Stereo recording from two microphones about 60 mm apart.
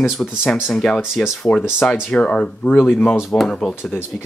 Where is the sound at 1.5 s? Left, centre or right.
Left.